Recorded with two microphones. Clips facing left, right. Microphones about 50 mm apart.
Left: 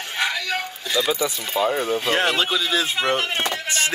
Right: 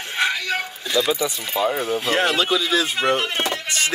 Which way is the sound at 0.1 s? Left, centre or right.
Centre.